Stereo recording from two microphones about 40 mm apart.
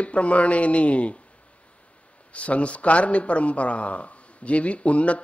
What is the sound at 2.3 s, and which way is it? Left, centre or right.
Speech, left.